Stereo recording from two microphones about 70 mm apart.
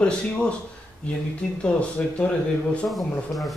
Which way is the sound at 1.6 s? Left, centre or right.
Centre.